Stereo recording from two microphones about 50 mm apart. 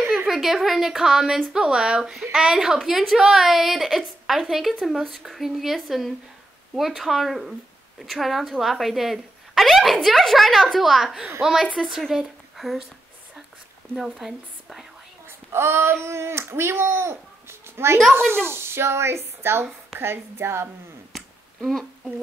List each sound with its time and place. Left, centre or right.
0.3 s a woman's voice: centre
11.7 s speech: centre
12.1 s speech: centre
13.9 s a woman's voice: centre
15.5 s speech: right
21.1 s a sound: centre